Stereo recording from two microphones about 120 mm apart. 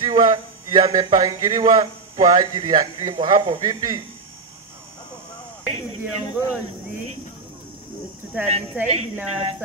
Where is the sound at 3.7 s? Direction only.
30° right (ahead or behind).